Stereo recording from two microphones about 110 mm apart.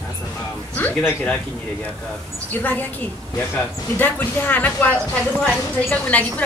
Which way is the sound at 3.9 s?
15° left (ahead or behind).